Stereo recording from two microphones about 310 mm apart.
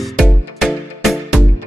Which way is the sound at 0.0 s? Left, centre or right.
Centre.